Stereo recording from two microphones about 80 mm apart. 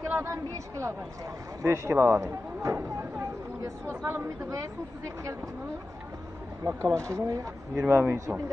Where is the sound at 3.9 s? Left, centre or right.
Right.